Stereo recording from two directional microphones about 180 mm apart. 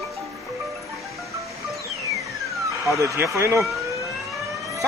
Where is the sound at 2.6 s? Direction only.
15° right (ahead or behind).